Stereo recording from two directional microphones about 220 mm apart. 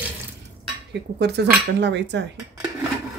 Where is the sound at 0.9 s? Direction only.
50° right (ahead or behind).